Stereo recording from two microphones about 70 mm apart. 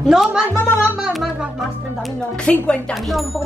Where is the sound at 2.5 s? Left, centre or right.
Centre.